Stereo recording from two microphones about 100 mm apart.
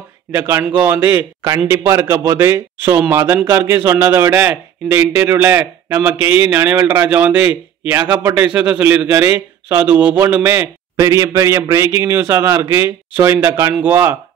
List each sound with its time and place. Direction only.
0.3 s a man's voice: 25° right (ahead or behind)